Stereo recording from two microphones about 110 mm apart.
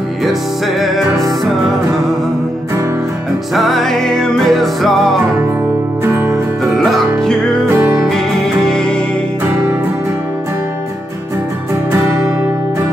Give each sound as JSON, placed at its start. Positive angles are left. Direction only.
{"t": 0.2, "sound": "music", "side_deg": 0}
{"t": 3.5, "sound": "music", "side_deg": 0}
{"t": 6.8, "sound": "music", "side_deg": 5}
{"t": 11.9, "sound": "music", "side_deg": -25}